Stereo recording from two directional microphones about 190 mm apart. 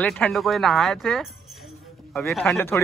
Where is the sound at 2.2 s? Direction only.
10° left (ahead or behind).